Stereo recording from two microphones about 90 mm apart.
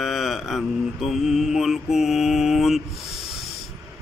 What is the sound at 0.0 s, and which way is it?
Mantra, 5° right (ahead or behind).